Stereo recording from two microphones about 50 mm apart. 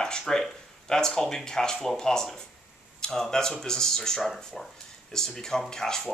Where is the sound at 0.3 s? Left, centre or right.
Centre.